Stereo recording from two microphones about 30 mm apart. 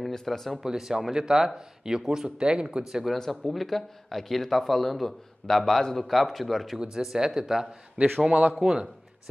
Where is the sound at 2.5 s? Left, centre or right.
Right.